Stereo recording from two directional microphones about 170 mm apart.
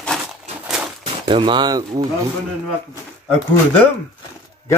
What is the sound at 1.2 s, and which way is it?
Speech, 30° right (ahead or behind).